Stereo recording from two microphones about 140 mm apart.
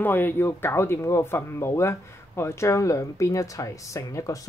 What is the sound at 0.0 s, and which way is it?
Speech, 15° left (ahead or behind).